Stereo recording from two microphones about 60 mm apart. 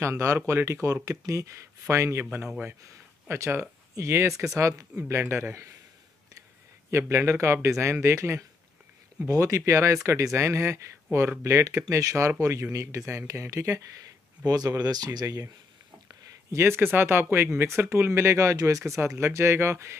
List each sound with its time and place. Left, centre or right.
0.0 s speech: right
3.3 s speech: right
4.6 s speech: right
5.1 s speech: right
6.9 s speech: right
14.4 s speech: right
16.6 s speech: right
18.9 s speech: right